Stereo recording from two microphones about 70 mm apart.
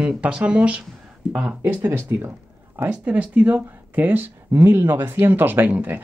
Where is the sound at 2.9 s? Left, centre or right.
Centre.